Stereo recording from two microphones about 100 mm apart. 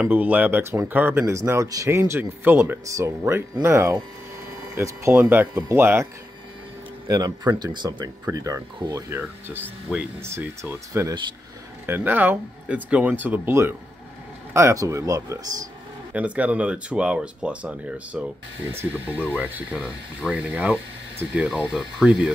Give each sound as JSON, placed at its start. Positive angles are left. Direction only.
{"t": 0.1, "sound": "speech", "side_deg": -15}
{"t": 2.8, "sound": "speech", "side_deg": -30}
{"t": 7.1, "sound": "speech", "side_deg": -40}
{"t": 8.3, "sound": "speech", "side_deg": -35}
{"t": 9.1, "sound": "speech", "side_deg": -20}
{"t": 10.2, "sound": "speech", "side_deg": -25}
{"t": 14.5, "sound": "speech", "side_deg": -30}
{"t": 16.1, "sound": "speech", "side_deg": -15}
{"t": 19.7, "sound": "speech", "side_deg": -5}